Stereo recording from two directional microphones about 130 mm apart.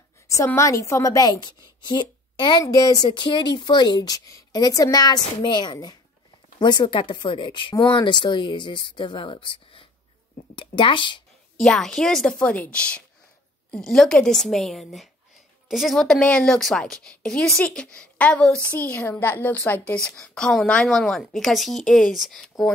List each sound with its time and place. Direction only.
0.6 s speech: 25° left (ahead or behind)
11.5 s a woman's voice: 5° left (ahead or behind)